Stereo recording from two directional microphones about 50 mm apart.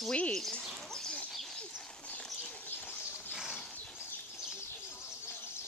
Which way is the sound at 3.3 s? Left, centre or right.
Centre.